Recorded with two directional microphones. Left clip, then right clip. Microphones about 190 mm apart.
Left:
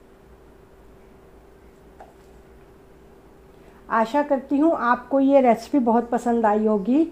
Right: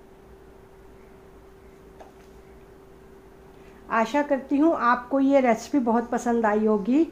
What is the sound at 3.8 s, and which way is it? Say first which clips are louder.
A woman's voice: left 2 dB; 15° left (ahead or behind).